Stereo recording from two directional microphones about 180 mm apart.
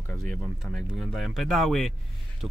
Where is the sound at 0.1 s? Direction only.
Centre (ahead or behind).